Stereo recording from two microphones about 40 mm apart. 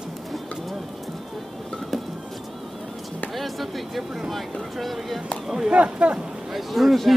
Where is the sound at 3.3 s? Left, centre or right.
Centre.